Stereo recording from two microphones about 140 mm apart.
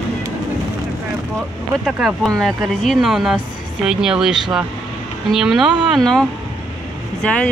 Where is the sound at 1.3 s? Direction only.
Centre (ahead or behind).